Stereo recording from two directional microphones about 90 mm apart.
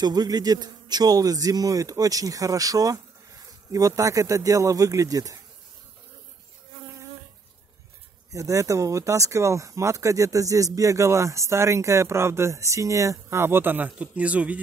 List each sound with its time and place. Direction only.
0.0 s a man's voice: 50° right (ahead or behind)
8.3 s a man's voice: 35° right (ahead or behind); by 14.6 s 15° right (ahead or behind)